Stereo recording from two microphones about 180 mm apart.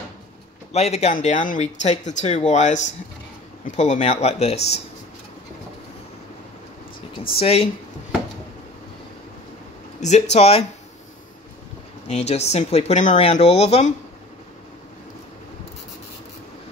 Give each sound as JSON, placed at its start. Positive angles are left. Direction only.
{"t": 0.7, "sound": "speech", "side_deg": 35}
{"t": 7.3, "sound": "speech", "side_deg": 35}
{"t": 9.9, "sound": "a sound", "side_deg": 40}
{"t": 10.3, "sound": "speech", "side_deg": 35}
{"t": 12.1, "sound": "speech", "side_deg": 35}